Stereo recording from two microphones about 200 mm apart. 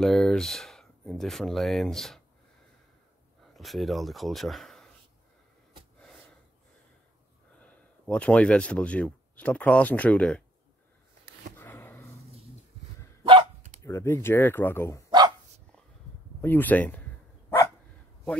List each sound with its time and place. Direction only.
0.0 s speech: centre (ahead or behind)
3.5 s speech: centre (ahead or behind)
7.6 s speech: 5° left (ahead or behind)
11.5 s a sound: 10° left (ahead or behind)
13.2 s dog: 25° right (ahead or behind)
13.8 s speech: 15° left (ahead or behind)
15.0 s dog: 20° right (ahead or behind)
16.3 s speech: 10° left (ahead or behind)